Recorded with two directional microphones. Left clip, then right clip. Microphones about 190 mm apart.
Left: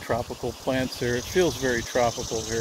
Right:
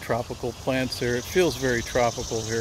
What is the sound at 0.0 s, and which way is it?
Speech, 15° right (ahead or behind).